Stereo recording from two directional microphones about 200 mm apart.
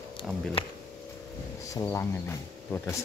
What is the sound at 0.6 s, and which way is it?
Speech, 25° left (ahead or behind).